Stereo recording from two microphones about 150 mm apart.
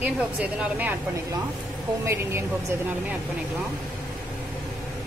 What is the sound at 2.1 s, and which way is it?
Speech, 15° right (ahead or behind).